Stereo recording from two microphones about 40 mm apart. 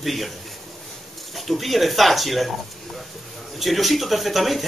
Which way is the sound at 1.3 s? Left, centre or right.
Centre.